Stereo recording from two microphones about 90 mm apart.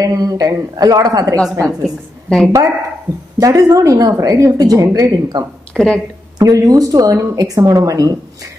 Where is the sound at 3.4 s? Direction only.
40° right (ahead or behind).